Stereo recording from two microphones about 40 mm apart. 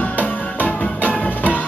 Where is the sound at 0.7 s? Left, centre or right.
Left.